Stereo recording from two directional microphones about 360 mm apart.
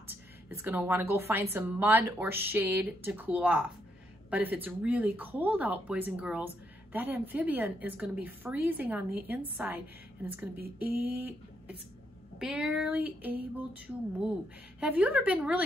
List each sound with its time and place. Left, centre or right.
0.1 s speech: centre
10.5 s speech: right
11.0 s speech: centre